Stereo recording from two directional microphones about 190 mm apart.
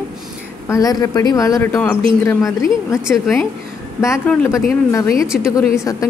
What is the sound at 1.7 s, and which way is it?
A woman's voice, 5° left (ahead or behind).